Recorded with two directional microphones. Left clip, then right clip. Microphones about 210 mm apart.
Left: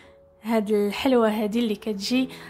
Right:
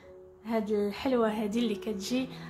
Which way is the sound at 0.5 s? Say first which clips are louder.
Left 7 dB; 35° left (ahead or behind).